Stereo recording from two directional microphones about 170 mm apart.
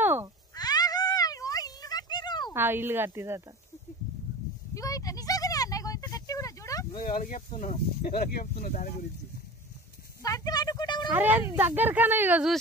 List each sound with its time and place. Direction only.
0.0 s cat: 15° right (ahead or behind)
0.6 s cat: 25° left (ahead or behind)
2.5 s speech: 15° right (ahead or behind)
4.7 s a sound: 20° left (ahead or behind)
7.0 s speech: 50° left (ahead or behind)
8.0 s speech: 60° left (ahead or behind)
8.5 s speech: 45° left (ahead or behind)
10.2 s a sound: 20° left (ahead or behind)
11.1 s speech: 10° right (ahead or behind)